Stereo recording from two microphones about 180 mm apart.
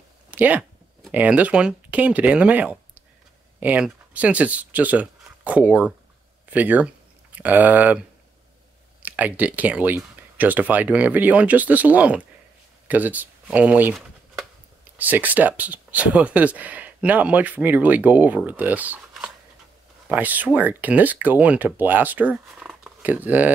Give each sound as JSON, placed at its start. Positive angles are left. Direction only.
{"t": 0.3, "sound": "speech", "side_deg": -10}
{"t": 9.0, "sound": "speech", "side_deg": -10}